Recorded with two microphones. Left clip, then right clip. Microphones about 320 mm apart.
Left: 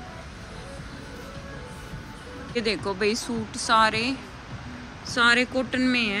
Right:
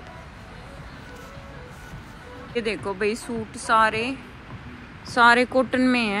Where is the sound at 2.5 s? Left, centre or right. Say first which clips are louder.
Even; centre.